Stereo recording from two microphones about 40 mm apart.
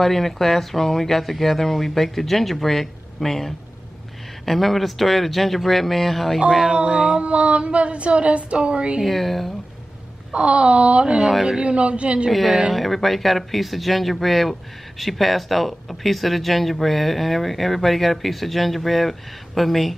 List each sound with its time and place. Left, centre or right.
0.0 s speech: centre
6.7 s speech: centre
7.2 s speech: right
9.0 s speech: centre
10.3 s speech: right
12.3 s speech: centre